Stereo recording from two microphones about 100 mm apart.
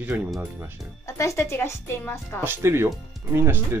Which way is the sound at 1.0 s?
30° left (ahead or behind).